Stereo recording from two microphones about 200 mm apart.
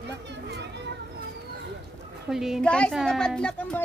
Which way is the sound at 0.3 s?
60° right (ahead or behind).